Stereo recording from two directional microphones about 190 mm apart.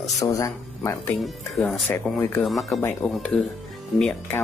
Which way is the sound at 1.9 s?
15° left (ahead or behind).